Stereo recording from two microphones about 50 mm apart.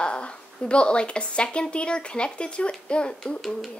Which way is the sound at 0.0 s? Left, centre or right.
Left.